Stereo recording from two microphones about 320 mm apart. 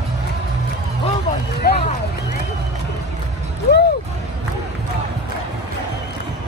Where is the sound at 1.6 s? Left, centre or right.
Left.